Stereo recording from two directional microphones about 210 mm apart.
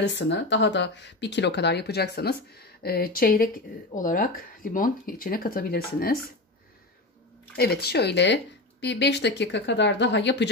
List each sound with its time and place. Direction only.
0.0 s speech: 55° left (ahead or behind)
7.5 s speech: 50° left (ahead or behind)